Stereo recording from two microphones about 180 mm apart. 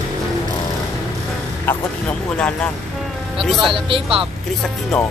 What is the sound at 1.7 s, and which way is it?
Speech, 5° left (ahead or behind).